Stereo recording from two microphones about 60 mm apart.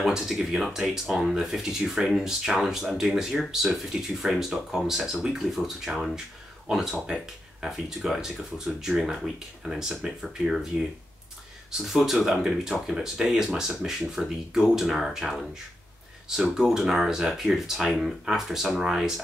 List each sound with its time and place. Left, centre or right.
0.0 s speech: centre
11.8 s speech: centre
16.5 s speech: centre